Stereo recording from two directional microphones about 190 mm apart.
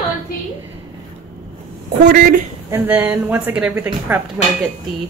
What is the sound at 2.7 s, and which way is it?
A woman's voice, 10° right (ahead or behind).